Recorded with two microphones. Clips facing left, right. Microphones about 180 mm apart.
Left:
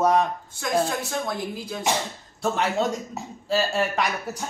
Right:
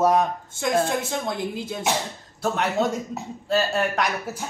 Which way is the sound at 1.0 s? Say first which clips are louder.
Right 1 dB; 20° right (ahead or behind).